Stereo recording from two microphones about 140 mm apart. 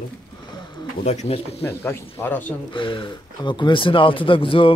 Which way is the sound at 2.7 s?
35° left (ahead or behind).